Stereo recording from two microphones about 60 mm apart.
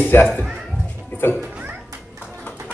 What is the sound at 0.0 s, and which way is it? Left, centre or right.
Music, left.